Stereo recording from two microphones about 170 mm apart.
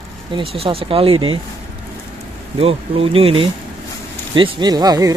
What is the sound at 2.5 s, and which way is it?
Speech, 35° right (ahead or behind).